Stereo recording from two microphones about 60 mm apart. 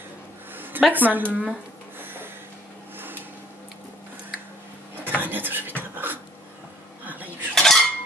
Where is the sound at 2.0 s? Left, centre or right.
Right.